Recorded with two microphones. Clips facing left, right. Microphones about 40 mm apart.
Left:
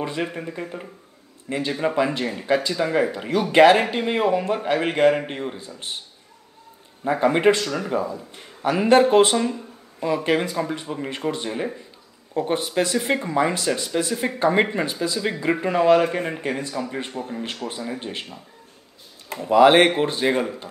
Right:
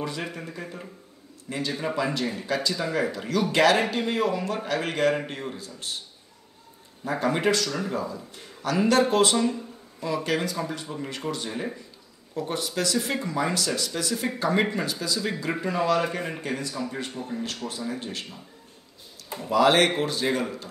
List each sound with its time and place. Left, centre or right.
0.0 s speech: left
7.1 s a man's voice: left
19.5 s speech: left